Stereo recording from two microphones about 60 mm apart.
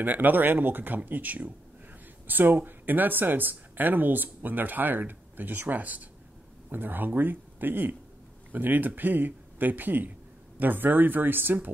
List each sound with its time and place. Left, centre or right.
0.0 s speech: right